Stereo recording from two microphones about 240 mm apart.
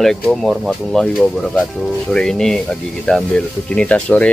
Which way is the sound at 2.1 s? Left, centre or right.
Centre.